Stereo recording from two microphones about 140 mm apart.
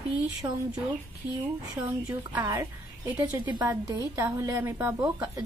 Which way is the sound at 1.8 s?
15° right (ahead or behind).